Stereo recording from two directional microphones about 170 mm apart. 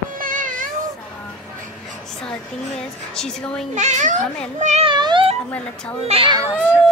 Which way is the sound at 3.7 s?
45° right (ahead or behind).